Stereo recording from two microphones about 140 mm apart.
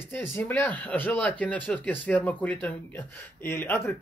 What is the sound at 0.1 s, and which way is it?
Speech, 15° left (ahead or behind).